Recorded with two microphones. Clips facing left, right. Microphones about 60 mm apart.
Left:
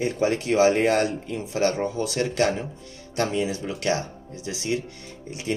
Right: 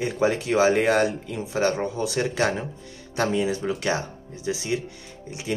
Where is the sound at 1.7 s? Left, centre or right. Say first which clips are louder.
Even; centre.